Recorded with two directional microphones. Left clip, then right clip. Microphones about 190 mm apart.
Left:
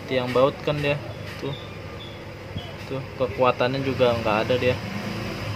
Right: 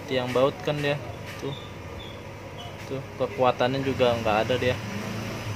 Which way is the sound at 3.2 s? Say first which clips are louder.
Left 2 dB; centre (ahead or behind).